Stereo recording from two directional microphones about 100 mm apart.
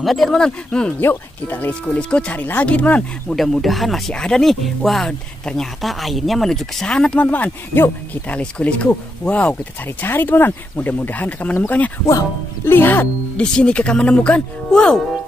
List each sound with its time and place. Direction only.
0.0 s speech: centre (ahead or behind)
3.3 s speech: centre (ahead or behind)
7.2 s speech: 20° left (ahead or behind)